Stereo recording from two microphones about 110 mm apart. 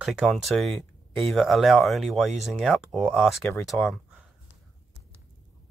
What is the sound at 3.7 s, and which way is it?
Speech, centre (ahead or behind).